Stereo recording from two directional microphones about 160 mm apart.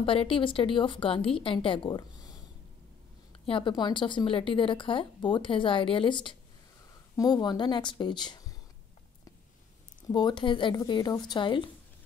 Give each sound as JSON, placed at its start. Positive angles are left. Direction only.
{"t": 0.0, "sound": "a woman's voice", "side_deg": 35}
{"t": 3.4, "sound": "a woman's voice", "side_deg": 30}
{"t": 10.0, "sound": "speech", "side_deg": 25}